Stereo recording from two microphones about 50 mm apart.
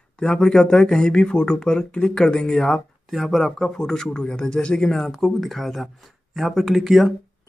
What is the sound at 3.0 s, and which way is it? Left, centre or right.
Speech, centre.